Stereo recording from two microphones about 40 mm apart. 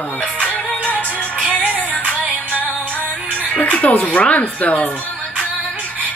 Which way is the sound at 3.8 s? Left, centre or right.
Left.